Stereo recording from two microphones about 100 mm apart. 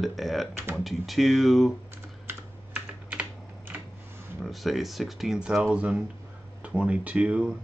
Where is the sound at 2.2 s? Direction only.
15° right (ahead or behind).